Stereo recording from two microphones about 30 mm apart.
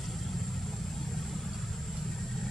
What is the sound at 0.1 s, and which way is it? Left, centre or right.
Vehicle, centre.